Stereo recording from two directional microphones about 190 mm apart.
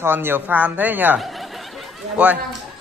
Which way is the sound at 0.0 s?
10° right (ahead or behind).